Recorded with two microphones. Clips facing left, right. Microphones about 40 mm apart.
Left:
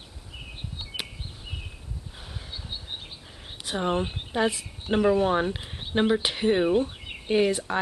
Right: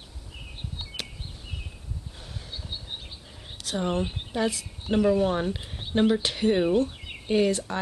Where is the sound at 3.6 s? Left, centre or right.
Left.